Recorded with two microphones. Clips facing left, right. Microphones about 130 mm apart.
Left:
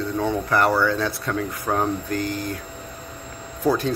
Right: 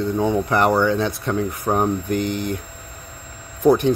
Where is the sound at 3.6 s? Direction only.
20° right (ahead or behind).